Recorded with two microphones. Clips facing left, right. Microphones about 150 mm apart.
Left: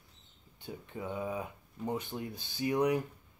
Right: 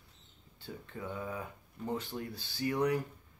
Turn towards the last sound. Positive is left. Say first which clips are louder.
# left 2 dB
turn(degrees=15)  # may be behind; listen again after turning